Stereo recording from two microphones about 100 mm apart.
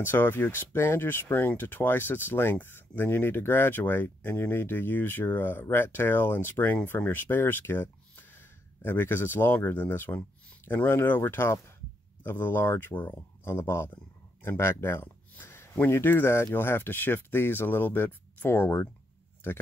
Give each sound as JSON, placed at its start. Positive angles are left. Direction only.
{"t": 0.0, "sound": "speech", "side_deg": 20}
{"t": 14.4, "sound": "a sound", "side_deg": 25}
{"t": 15.7, "sound": "speech", "side_deg": 20}